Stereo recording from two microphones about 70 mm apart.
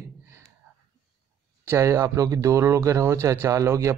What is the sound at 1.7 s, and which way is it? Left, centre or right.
Speech, right.